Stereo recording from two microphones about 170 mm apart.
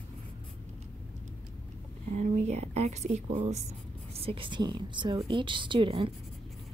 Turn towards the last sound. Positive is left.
turn(degrees=-30)  # may be behind; listen again after turning